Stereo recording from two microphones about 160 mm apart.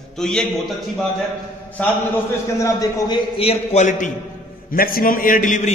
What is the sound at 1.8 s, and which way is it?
Speech, 10° left (ahead or behind).